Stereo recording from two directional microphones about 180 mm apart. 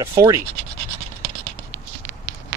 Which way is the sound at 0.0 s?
15° right (ahead or behind).